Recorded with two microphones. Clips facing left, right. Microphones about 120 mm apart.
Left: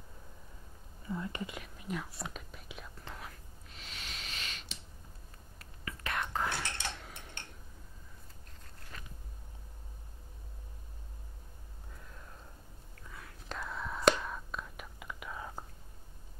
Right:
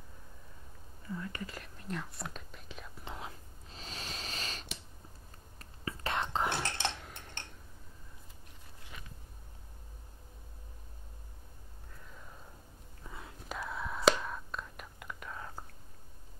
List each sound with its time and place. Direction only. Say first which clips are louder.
1.1 s speech: left 2 dB; 20° left (ahead or behind)
1.5 s speech: left 1 dB; 5° left (ahead or behind)
3.1 s a sound: right 6 dB; 25° right (ahead or behind)
5.6 s whispering: right 4 dB; 30° right (ahead or behind)
7.0 s cutlery: even; centre (ahead or behind)
8.9 s a sound: left 1 dB; 10° right (ahead or behind)
13.5 s whispering: right 1 dB; 5° right (ahead or behind)